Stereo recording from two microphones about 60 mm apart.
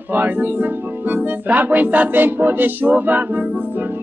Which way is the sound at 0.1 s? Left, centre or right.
Right.